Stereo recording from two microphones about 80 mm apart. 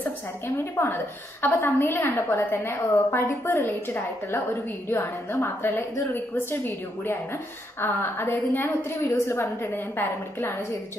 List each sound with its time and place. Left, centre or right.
0.8 s a woman's voice: left